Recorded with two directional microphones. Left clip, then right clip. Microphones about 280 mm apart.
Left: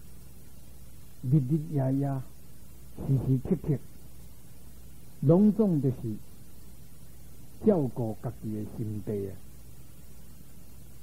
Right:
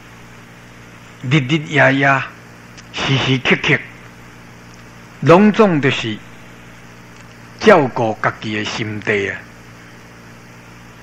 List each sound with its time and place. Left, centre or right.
1.3 s speech: right
5.2 s speech: right
7.6 s speech: right